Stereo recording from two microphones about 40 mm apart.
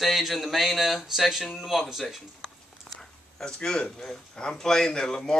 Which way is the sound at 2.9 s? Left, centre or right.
Centre.